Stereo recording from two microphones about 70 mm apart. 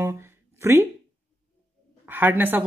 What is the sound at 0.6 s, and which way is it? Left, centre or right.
Speech, right.